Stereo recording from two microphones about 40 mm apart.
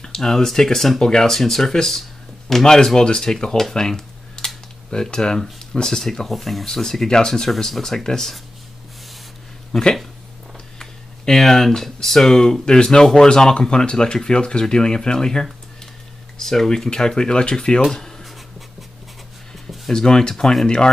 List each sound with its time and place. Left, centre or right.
0.0 s speech: centre
2.0 s a sound: centre
2.6 s speech: centre
3.7 s a sound: centre
5.0 s speech: centre
9.7 s speech: centre
19.9 s speech: centre